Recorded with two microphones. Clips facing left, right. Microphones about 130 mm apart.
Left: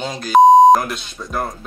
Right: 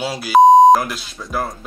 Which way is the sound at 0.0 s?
5° right (ahead or behind).